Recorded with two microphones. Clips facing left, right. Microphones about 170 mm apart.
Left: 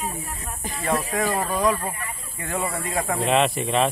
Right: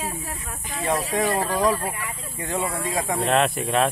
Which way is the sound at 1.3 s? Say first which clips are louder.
Even; centre (ahead or behind).